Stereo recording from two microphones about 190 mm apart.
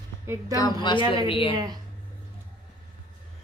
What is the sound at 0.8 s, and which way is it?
Speech, 25° left (ahead or behind).